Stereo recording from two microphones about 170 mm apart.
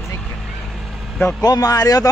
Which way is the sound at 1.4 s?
20° left (ahead or behind).